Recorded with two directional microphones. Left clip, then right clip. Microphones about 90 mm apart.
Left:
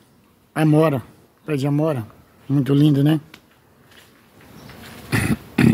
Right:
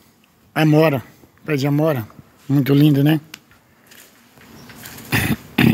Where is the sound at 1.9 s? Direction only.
25° right (ahead or behind).